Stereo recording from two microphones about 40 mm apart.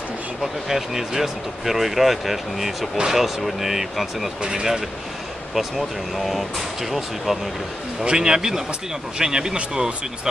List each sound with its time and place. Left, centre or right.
0.4 s speech: centre
4.4 s speech: centre
8.0 s speech: centre